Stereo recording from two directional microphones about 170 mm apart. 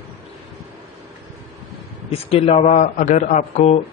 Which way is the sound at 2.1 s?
35° left (ahead or behind).